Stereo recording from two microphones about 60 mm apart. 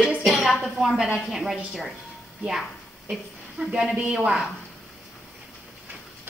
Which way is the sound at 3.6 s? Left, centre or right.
Centre.